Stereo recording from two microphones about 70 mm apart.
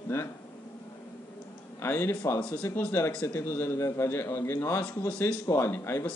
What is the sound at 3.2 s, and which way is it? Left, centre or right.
A man's voice, left.